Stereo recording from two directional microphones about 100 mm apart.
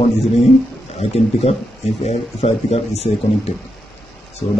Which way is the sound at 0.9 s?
90° left.